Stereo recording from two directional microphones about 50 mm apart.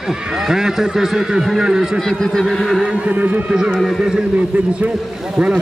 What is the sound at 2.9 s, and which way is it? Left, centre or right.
Speech, right.